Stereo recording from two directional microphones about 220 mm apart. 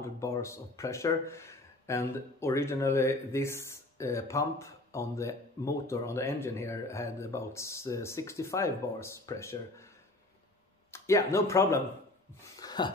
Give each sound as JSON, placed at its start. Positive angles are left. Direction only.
{"t": 0.0, "sound": "speech", "side_deg": 15}
{"t": 10.9, "sound": "speech", "side_deg": 15}
{"t": 12.5, "sound": "a sound", "side_deg": 20}